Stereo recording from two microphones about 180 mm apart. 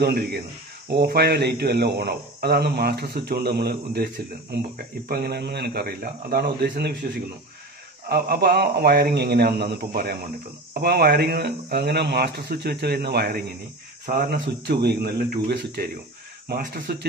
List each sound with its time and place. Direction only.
0.0 s speech: 60° right (ahead or behind)
8.1 s speech: 60° right (ahead or behind)
14.0 s speech: 50° right (ahead or behind)
14.7 s speech: 65° right (ahead or behind)